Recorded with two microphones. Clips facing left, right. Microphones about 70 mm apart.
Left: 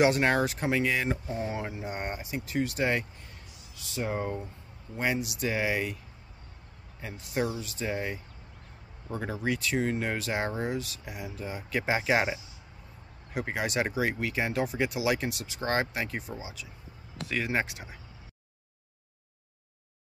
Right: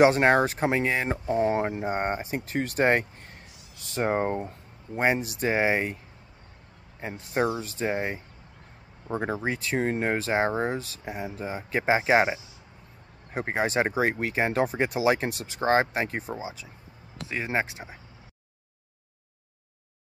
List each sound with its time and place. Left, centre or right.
0.0 s speech: right
7.0 s speech: right